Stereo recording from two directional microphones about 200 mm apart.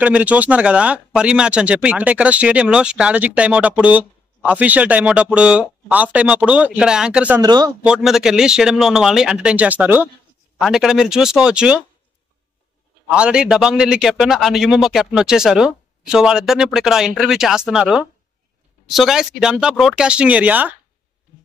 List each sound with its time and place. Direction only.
0.0 s speech: 5° right (ahead or behind)
7.4 s a man's voice: 20° right (ahead or behind)
7.8 s a man's voice: 5° right (ahead or behind)
13.1 s a man's voice: 5° right (ahead or behind)